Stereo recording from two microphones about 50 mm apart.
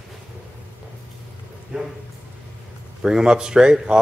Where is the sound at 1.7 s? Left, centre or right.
Centre.